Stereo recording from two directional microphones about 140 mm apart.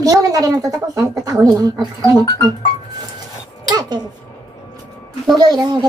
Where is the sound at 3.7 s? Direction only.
30° right (ahead or behind).